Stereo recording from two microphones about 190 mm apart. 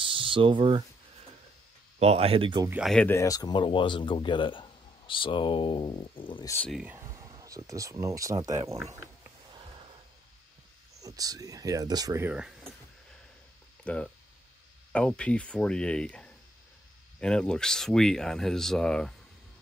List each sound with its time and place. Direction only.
0.0 s speech: 25° right (ahead or behind)
2.0 s speech: 35° right (ahead or behind)
2.7 s speech: centre (ahead or behind); by 6.5 s 25° left (ahead or behind)
6.7 s speech: 5° right (ahead or behind)
8.9 s mechanisms: 15° right (ahead or behind)
11.0 s speech: 20° right (ahead or behind)
13.8 s speech: 5° left (ahead or behind)